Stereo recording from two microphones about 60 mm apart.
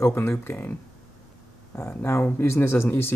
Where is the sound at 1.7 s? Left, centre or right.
Left.